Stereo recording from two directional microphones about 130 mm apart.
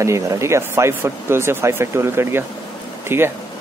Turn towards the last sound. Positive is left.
turn(degrees=-20)  # may be behind; listen again after turning